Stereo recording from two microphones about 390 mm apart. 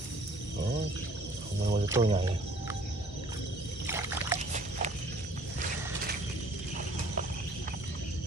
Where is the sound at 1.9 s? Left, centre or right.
Centre.